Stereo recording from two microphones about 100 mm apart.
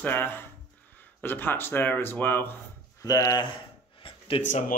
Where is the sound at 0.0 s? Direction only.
20° left (ahead or behind).